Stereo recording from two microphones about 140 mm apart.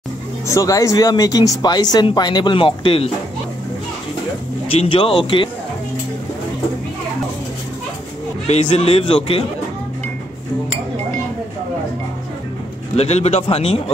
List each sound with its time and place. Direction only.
0.5 s speech: 25° left (ahead or behind); by 3.1 s 40° left (ahead or behind)
4.6 s speech: 40° left (ahead or behind)
8.5 s a man's voice: 45° left (ahead or behind)
12.9 s a man's voice: 50° left (ahead or behind)